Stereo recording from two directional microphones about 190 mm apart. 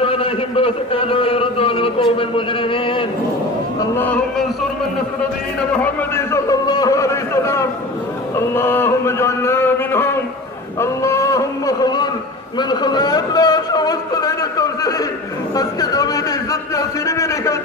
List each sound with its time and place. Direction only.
0.0 s a man's voice: 30° left (ahead or behind)
3.9 s speech: 10° left (ahead or behind)
6.1 s speech: 15° left (ahead or behind)
10.8 s a sound: 15° left (ahead or behind)
12.5 s a man's voice: 20° left (ahead or behind)